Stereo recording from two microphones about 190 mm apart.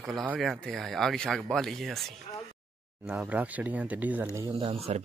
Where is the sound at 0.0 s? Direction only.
5° right (ahead or behind).